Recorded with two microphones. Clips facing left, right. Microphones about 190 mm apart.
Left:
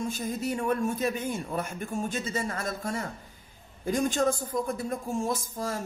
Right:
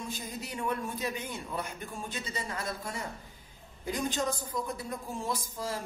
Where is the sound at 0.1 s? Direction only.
50° left (ahead or behind).